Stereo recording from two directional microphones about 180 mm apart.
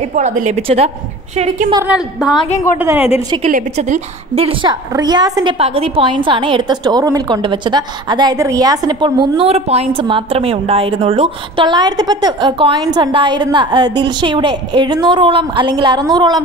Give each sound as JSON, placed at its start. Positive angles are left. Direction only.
{"t": 0.1, "sound": "a woman's voice", "side_deg": -45}
{"t": 1.9, "sound": "a woman's voice", "side_deg": 0}
{"t": 3.4, "sound": "a woman's voice", "side_deg": -45}
{"t": 4.9, "sound": "a woman's voice", "side_deg": -20}